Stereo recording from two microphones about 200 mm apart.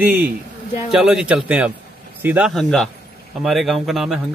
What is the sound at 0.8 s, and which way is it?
Speech, centre (ahead or behind).